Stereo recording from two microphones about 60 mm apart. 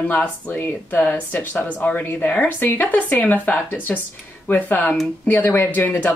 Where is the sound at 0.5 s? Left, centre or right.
Left.